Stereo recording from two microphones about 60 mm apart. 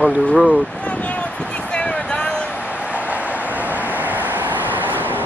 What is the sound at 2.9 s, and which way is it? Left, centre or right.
Vehicle, right.